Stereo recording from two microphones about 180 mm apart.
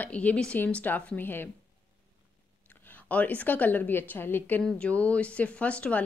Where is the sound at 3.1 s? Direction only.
10° left (ahead or behind).